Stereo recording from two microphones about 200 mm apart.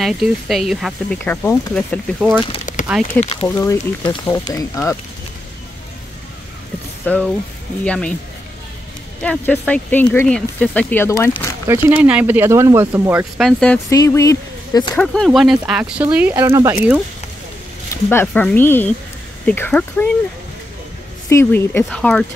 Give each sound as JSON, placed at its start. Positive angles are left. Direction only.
{"t": 0.0, "sound": "speech", "side_deg": 0}
{"t": 2.1, "sound": "speech", "side_deg": -5}
{"t": 2.6, "sound": "a sound", "side_deg": 40}
{"t": 3.2, "sound": "speech", "side_deg": 30}
{"t": 3.4, "sound": "speech", "side_deg": 10}
{"t": 7.1, "sound": "speech", "side_deg": 5}
{"t": 9.2, "sound": "speech", "side_deg": 5}
{"t": 11.6, "sound": "speech", "side_deg": -10}
{"t": 13.4, "sound": "speech", "side_deg": 0}
{"t": 13.8, "sound": "speech", "side_deg": 15}
{"t": 15.0, "sound": "speech", "side_deg": 0}
{"t": 18.1, "sound": "speech", "side_deg": 5}
{"t": 21.3, "sound": "speech", "side_deg": 10}